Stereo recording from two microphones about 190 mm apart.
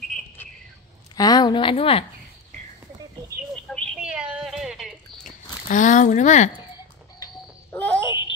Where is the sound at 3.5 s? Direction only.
5° left (ahead or behind).